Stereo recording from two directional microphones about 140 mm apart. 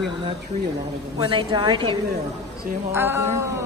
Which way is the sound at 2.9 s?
15° right (ahead or behind).